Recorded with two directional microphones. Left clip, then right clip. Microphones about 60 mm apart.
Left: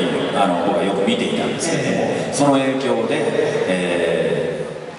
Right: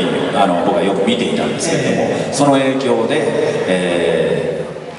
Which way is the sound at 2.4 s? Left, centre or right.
Right.